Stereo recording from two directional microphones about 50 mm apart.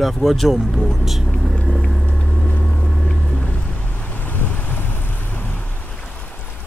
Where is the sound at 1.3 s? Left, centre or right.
Centre.